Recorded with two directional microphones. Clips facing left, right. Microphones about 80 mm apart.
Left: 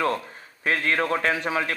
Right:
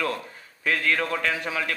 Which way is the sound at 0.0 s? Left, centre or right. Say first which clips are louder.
Left 4 dB; left.